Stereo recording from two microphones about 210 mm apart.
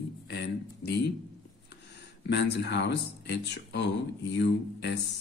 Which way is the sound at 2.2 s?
55° left (ahead or behind).